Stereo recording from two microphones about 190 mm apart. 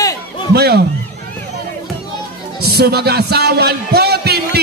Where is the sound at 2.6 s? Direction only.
55° right (ahead or behind).